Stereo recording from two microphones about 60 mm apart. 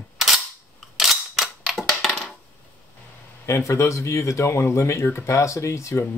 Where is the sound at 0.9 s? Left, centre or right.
Centre.